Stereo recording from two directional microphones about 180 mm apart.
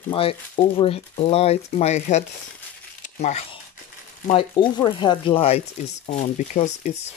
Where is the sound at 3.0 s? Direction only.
40° left (ahead or behind).